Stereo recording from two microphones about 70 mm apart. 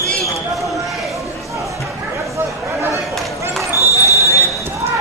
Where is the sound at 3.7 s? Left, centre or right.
Left.